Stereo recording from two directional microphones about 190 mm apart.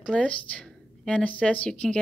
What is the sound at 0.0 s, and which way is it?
A woman's voice, 5° left (ahead or behind).